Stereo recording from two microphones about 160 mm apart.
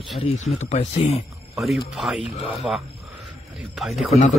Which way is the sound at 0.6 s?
45° left (ahead or behind).